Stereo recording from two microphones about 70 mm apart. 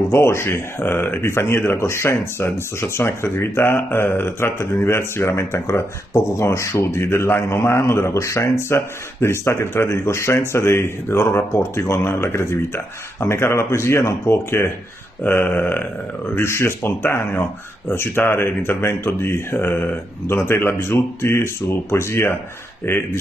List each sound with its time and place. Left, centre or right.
0.1 s speech: left
15.2 s a sound: left
16.3 s speech: left